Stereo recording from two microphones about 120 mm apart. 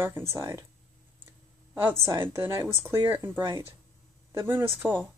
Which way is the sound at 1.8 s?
20° right (ahead or behind).